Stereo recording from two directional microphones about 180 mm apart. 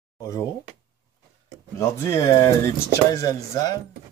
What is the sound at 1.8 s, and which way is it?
Speech, 15° left (ahead or behind).